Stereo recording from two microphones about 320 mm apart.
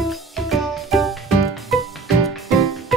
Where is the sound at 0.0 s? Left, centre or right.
Centre.